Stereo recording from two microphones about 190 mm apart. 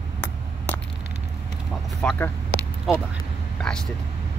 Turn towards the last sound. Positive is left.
turn(degrees=5)  # may be behind; listen again after turning